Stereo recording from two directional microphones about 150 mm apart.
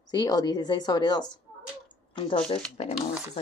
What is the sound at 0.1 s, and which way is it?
Speech, 25° left (ahead or behind).